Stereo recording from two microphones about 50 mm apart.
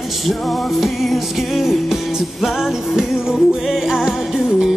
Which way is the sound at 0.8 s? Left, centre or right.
Centre.